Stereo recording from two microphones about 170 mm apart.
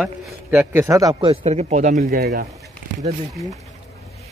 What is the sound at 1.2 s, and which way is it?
Speech, 40° right (ahead or behind).